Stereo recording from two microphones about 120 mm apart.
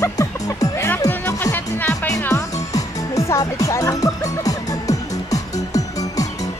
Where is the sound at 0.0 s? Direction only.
30° left (ahead or behind).